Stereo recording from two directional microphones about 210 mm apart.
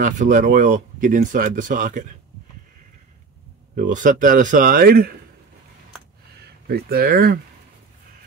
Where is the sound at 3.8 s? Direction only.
40° right (ahead or behind).